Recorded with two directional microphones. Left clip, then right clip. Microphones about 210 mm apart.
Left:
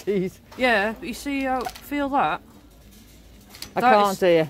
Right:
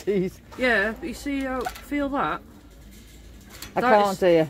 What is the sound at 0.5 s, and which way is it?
Speech, 55° left (ahead or behind).